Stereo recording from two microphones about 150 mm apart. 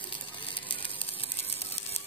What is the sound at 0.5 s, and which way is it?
Ratchet, 35° left (ahead or behind).